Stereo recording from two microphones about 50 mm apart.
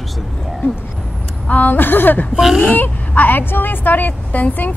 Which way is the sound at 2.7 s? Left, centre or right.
Left.